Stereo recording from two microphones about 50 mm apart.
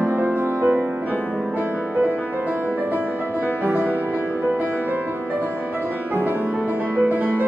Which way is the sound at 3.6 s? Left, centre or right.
Right.